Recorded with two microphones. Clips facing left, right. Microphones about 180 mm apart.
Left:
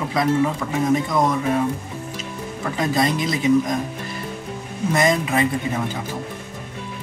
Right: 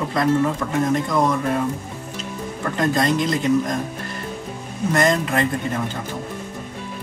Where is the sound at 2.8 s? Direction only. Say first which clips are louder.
Right 1 dB; 5° left (ahead or behind).